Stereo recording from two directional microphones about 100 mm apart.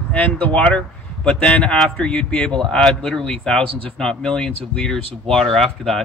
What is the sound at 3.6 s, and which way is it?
Speech, 65° right (ahead or behind).